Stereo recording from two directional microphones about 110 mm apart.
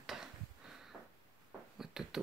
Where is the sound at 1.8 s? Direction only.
5° right (ahead or behind).